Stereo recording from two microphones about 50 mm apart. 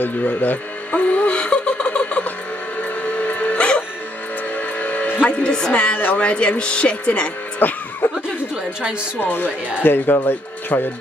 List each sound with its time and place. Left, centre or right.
0.0 s music: left; by 3.8 s centre
4.6 s music: left
5.4 s a woman's voice: centre
8.0 s speech: left
9.2 s speech: left
10.7 s speech: left